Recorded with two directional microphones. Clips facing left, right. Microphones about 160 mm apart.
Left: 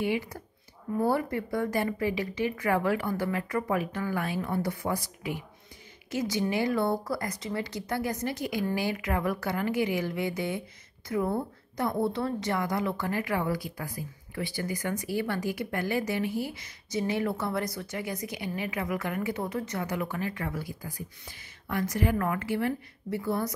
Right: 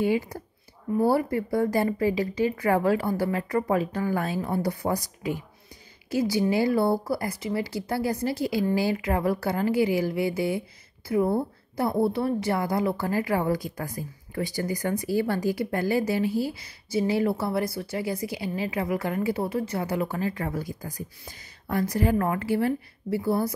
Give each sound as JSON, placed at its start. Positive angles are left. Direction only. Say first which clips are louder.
{"t": 0.0, "sound": "a woman's voice", "louder": "right 5 dB", "side_deg": -40}
{"t": 6.1, "sound": "speech", "louder": "right 5 dB", "side_deg": -30}
{"t": 13.7, "sound": "a woman's voice", "louder": "right 4 dB", "side_deg": -45}
{"t": 16.3, "sound": "speech", "louder": "right 5 dB", "side_deg": 20}
{"t": 16.9, "sound": "a woman's voice", "louder": "right 5 dB", "side_deg": -25}